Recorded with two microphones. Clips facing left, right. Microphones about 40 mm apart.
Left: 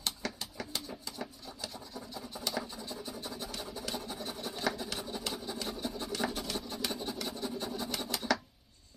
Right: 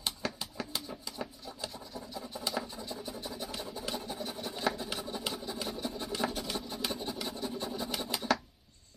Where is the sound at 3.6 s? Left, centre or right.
Centre.